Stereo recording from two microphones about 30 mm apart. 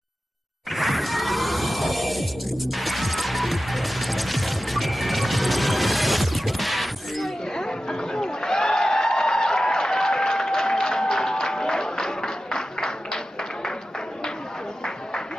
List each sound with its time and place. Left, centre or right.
0.7 s music: centre
7.5 s music: left